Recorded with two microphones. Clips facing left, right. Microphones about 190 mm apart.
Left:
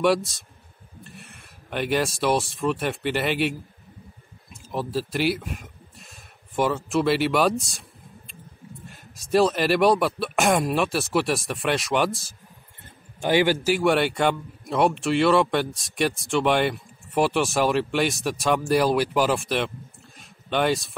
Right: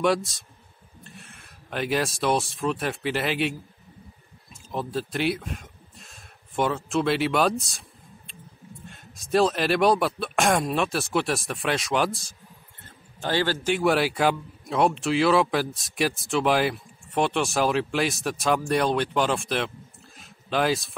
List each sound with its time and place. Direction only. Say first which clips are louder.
0.0 s speech: left 2 dB; centre (ahead or behind)
4.6 s speech: left 2 dB; centre (ahead or behind)
8.8 s speech: even; centre (ahead or behind)
12.8 s a sound: left 5 dB; 15° left (ahead or behind)
13.7 s speech: left 1 dB; centre (ahead or behind)
20.2 s a sound: left 1 dB; centre (ahead or behind)